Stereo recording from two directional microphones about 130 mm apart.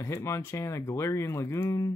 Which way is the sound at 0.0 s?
20° left (ahead or behind).